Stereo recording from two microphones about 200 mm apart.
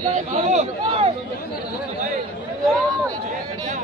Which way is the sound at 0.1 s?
35° right (ahead or behind).